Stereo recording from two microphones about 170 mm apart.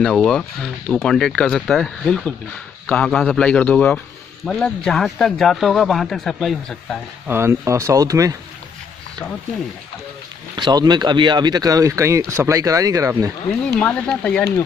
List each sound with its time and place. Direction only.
0.0 s a man's voice: 5° left (ahead or behind)
7.2 s speech: 15° right (ahead or behind)
10.5 s speech: 25° right (ahead or behind)
13.7 s speech: 5° left (ahead or behind)